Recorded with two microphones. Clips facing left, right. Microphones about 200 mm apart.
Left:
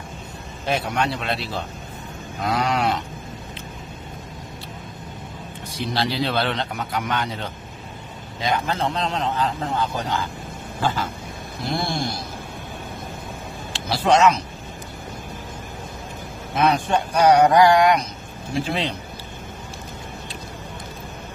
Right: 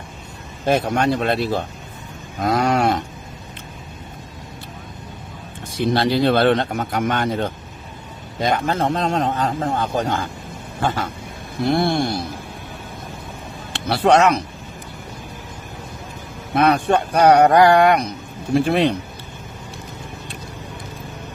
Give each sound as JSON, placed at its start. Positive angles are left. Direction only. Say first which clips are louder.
{"t": 0.7, "sound": "a man's voice", "louder": "right 6 dB", "side_deg": -45}
{"t": 5.9, "sound": "a man's voice", "louder": "right 6 dB", "side_deg": -50}
{"t": 11.6, "sound": "speech", "louder": "right 7 dB", "side_deg": -65}
{"t": 13.7, "sound": "speech", "louder": "right 3 dB", "side_deg": -60}
{"t": 16.5, "sound": "speech", "louder": "right 4 dB", "side_deg": -60}